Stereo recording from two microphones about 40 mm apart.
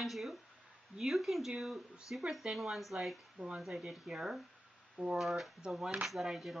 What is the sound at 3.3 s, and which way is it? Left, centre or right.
Speech, right.